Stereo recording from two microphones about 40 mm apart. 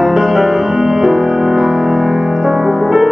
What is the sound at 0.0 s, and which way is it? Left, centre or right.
Music, centre.